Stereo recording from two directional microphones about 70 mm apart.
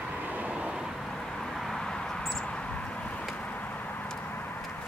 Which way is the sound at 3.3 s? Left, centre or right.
Left.